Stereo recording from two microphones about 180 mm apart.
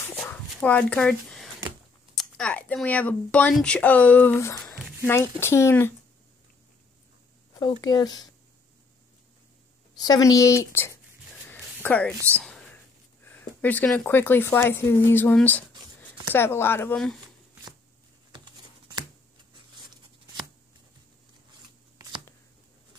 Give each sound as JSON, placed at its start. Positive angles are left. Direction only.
{"t": 0.1, "sound": "a sound", "side_deg": 10}
{"t": 2.1, "sound": "speech", "side_deg": 5}
{"t": 7.8, "sound": "speech", "side_deg": 20}
{"t": 10.0, "sound": "speech", "side_deg": 20}
{"t": 11.4, "sound": "a sound", "side_deg": 10}
{"t": 13.2, "sound": "speech", "side_deg": 10}